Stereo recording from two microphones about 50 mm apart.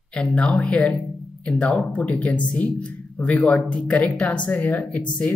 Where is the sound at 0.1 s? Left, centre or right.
Left.